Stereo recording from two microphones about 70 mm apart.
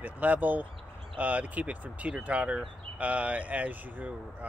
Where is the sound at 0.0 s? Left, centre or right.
Right.